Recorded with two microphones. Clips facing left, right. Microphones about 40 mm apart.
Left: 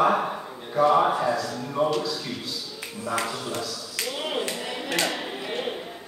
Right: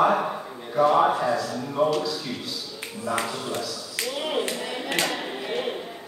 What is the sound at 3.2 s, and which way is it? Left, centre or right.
Speech, centre.